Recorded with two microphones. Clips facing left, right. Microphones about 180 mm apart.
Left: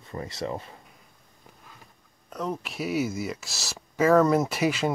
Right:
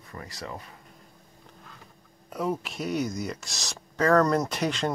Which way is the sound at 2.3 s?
5° right (ahead or behind).